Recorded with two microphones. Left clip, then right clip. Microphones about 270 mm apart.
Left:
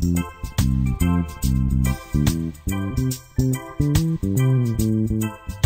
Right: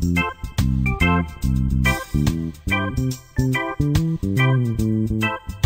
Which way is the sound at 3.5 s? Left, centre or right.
Centre.